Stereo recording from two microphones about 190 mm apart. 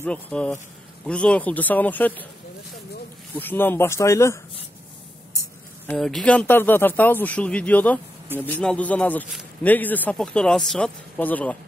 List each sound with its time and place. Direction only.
0.0 s speech: 5° left (ahead or behind)
3.3 s speech: 10° left (ahead or behind)
5.3 s a sound: 15° left (ahead or behind)
5.9 s speech: centre (ahead or behind)